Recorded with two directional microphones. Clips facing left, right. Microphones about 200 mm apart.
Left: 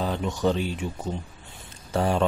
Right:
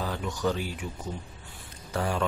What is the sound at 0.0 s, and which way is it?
Speech, 25° left (ahead or behind).